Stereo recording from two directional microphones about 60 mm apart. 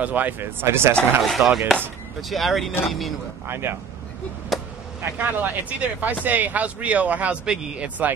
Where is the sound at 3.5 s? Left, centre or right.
Right.